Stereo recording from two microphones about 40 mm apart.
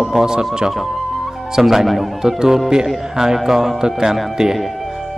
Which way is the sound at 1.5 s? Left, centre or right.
Centre.